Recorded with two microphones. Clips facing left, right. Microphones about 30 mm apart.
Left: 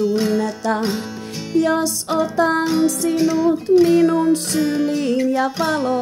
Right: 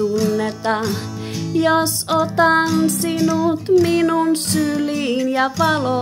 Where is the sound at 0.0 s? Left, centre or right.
Left.